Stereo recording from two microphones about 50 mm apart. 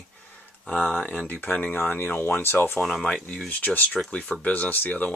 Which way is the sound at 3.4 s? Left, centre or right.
Left.